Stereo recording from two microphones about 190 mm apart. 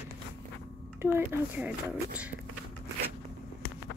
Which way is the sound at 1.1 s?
10° right (ahead or behind).